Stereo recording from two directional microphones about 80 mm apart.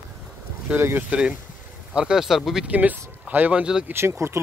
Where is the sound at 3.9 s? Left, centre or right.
Right.